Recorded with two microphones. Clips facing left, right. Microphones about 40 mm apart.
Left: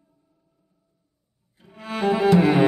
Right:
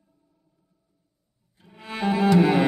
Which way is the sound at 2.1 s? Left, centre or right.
Centre.